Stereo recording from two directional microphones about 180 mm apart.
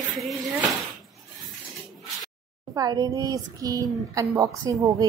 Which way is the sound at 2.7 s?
20° right (ahead or behind).